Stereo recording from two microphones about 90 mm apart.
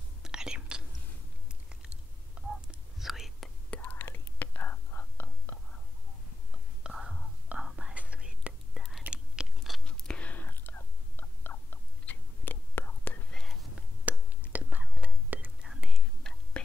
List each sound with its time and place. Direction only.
0.2 s whispering: 10° right (ahead or behind)
1.5 s chewing: 10° right (ahead or behind)
2.4 s whispering: 5° right (ahead or behind)
3.7 s whispering: 20° left (ahead or behind)
6.8 s whispering: 5° right (ahead or behind)
7.9 s whispering: 15° right (ahead or behind)
9.8 s whispering: 10° left (ahead or behind)
13.3 s whispering: 5° left (ahead or behind)
14.0 s whispering: 15° right (ahead or behind)
15.7 s whispering: centre (ahead or behind)
16.6 s whispering: 10° left (ahead or behind)